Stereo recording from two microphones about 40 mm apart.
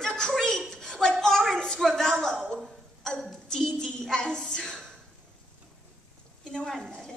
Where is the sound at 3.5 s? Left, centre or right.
Centre.